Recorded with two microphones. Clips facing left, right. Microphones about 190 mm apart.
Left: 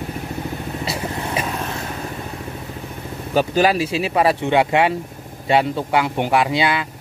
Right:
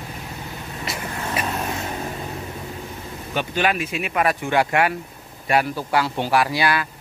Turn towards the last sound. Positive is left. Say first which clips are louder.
# left 2 dB
turn(degrees=20)  # may be behind; listen again after turning